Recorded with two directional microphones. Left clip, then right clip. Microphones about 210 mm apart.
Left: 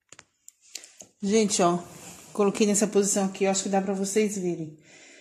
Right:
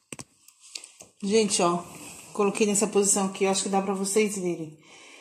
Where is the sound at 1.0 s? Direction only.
40° left (ahead or behind).